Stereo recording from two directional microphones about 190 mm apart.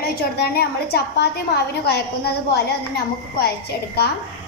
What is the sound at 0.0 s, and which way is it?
A woman's voice, 55° left (ahead or behind).